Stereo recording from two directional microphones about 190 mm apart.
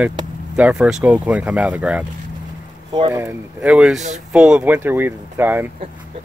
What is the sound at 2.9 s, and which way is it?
Speech, 20° right (ahead or behind).